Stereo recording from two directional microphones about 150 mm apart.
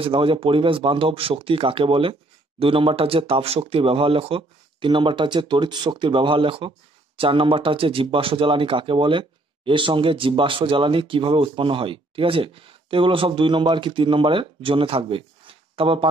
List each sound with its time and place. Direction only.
0.0 s speech: 35° right (ahead or behind)